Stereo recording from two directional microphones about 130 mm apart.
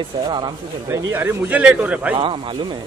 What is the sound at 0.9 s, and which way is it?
A man's voice, 20° right (ahead or behind).